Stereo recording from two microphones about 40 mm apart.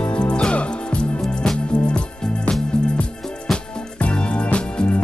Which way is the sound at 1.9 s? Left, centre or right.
Left.